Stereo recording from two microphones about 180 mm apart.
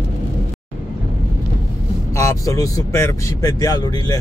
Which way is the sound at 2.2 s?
20° left (ahead or behind).